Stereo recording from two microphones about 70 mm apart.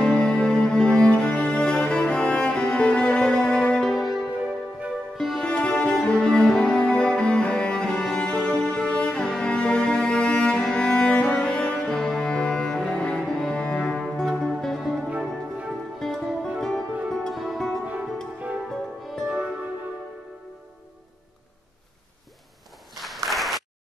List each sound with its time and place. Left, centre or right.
0.0 s music: centre
5.5 s music: centre
8.2 s cello: centre
15.0 s music: centre
16.0 s music: centre
19.2 s music: centre
22.9 s applause: centre